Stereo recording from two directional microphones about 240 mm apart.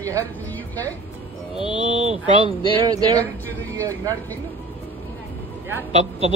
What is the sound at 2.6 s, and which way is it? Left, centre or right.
Speech, centre.